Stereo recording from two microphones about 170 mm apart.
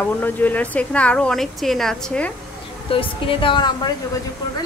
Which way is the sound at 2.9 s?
30° left (ahead or behind).